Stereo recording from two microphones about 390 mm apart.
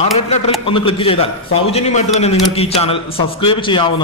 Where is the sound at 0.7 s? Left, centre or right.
Centre.